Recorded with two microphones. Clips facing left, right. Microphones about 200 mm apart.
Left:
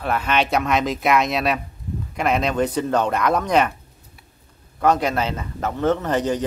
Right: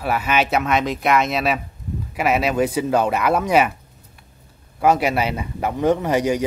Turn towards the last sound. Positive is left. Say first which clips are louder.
# right 2 dB
turn(degrees=-10)  # may be behind; listen again after turning